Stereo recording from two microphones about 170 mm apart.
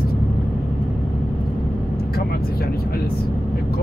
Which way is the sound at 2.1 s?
65° left (ahead or behind).